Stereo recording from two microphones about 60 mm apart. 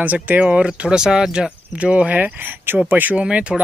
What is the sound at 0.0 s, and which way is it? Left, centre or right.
Speech, right.